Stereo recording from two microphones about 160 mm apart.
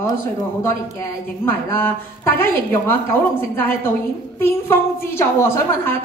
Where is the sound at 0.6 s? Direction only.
15° left (ahead or behind).